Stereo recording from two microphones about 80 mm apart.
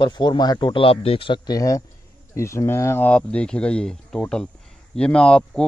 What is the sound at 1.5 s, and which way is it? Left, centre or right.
Speech, left.